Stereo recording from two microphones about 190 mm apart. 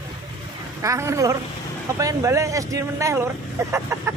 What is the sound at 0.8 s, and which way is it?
Speech, 15° right (ahead or behind).